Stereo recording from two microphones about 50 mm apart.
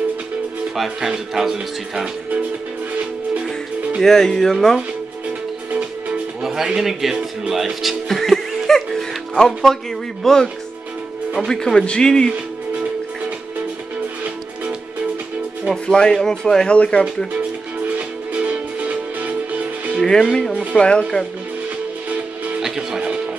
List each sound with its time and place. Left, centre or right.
0.7 s speech: centre
4.0 s speech: centre
6.4 s speech: centre
8.1 s music: centre
11.4 s speech: centre
15.7 s speech: centre
16.6 s speech: left
17.8 s music: right
20.0 s speech: centre
22.6 s music: centre